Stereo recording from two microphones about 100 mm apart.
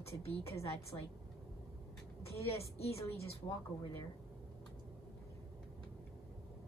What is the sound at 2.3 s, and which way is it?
Speech, 90° left.